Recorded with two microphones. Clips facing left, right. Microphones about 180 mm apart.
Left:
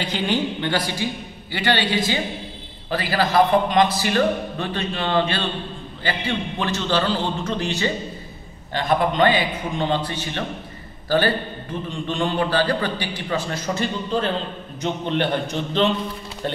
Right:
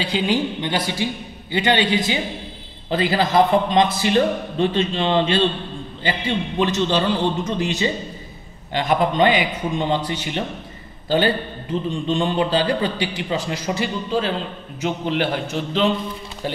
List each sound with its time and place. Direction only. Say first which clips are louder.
0.1 s a man's voice: right 3 dB; 15° right (ahead or behind)